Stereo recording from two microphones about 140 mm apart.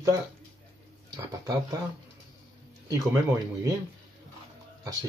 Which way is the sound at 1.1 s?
30° right (ahead or behind).